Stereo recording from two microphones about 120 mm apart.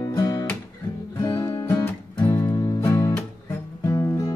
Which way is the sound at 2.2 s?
35° left (ahead or behind).